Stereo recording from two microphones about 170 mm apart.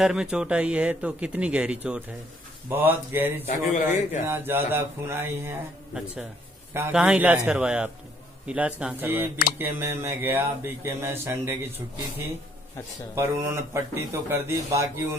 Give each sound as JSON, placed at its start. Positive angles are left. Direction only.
{"t": 0.0, "sound": "speech", "side_deg": -5}
{"t": 3.4, "sound": "a man's voice", "side_deg": 45}
{"t": 4.3, "sound": "speech", "side_deg": -15}
{"t": 6.7, "sound": "a man's voice", "side_deg": -15}
{"t": 13.1, "sound": "speech", "side_deg": -15}